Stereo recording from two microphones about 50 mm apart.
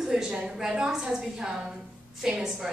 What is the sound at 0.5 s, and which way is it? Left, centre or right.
A woman's voice, centre.